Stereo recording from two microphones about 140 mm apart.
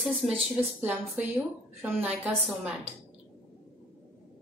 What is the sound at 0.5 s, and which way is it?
A woman's voice, 15° right (ahead or behind).